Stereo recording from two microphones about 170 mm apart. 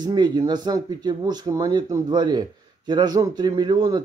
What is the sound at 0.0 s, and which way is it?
A man's voice, 25° right (ahead or behind).